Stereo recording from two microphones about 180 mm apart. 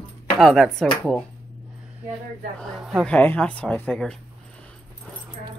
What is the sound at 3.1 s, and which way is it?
Speech, 10° left (ahead or behind).